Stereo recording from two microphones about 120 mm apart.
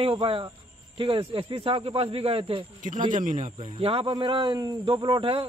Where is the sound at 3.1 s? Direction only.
90° right.